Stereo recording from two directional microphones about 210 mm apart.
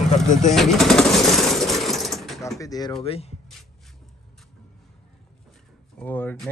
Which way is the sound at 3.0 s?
30° left (ahead or behind).